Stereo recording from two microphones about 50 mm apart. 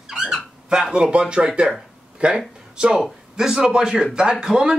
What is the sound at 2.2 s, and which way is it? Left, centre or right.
A man's voice, right.